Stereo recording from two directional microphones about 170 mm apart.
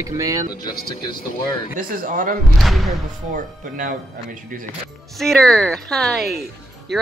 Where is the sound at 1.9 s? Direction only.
55° right (ahead or behind).